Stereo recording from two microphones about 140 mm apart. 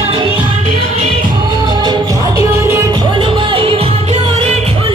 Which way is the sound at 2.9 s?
35° right (ahead or behind).